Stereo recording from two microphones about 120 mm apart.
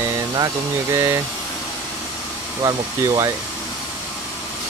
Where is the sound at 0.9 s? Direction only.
25° right (ahead or behind).